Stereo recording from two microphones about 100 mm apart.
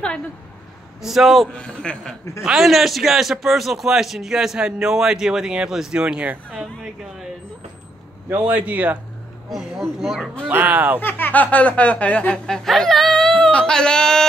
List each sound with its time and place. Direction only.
1.0 s a man's voice: centre (ahead or behind)
1.5 s speech: 10° left (ahead or behind)
2.4 s a man's voice: 5° right (ahead or behind)
8.5 s speech: 15° right (ahead or behind)
9.5 s a man's voice: 5° right (ahead or behind)
10.5 s speech: 15° right (ahead or behind)
11.0 s speech: 20° left (ahead or behind)